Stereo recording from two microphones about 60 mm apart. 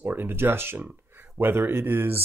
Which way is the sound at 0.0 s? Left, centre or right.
Right.